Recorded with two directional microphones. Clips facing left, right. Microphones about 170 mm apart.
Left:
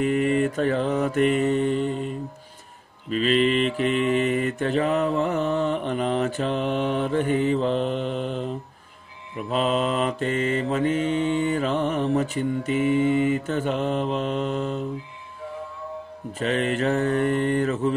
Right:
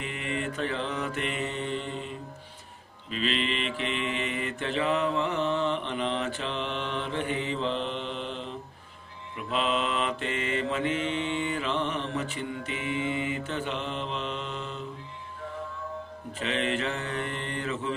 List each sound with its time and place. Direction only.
0.0 s mantra: 45° left (ahead or behind)
16.3 s mantra: 45° left (ahead or behind)